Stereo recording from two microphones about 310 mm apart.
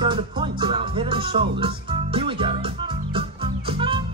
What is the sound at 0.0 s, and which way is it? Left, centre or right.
Music, centre.